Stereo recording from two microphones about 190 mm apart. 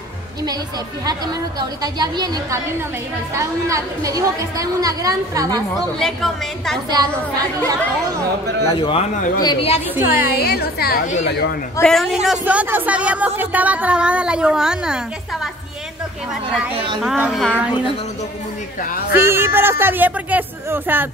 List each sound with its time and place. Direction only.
1.0 s a woman's voice: 20° right (ahead or behind)
5.9 s a woman's voice: centre (ahead or behind)
8.6 s a man's voice: 25° left (ahead or behind)
9.9 s speech: 10° right (ahead or behind)
10.3 s a woman's voice: 55° left (ahead or behind)
11.8 s speech: centre (ahead or behind)
17.0 s a woman's voice: centre (ahead or behind)
18.9 s a woman's voice: 55° left (ahead or behind)
19.1 s speech: 10° right (ahead or behind)